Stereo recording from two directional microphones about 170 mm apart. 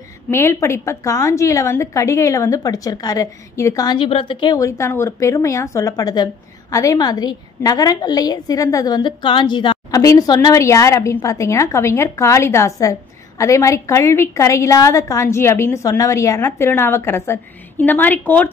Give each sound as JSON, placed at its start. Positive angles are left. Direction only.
{"t": 0.3, "sound": "a woman's voice", "side_deg": 15}